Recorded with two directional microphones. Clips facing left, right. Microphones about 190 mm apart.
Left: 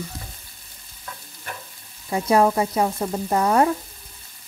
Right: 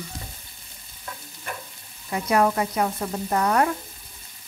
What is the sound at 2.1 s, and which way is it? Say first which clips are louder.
Frying: left 3 dB; 25° left (ahead or behind).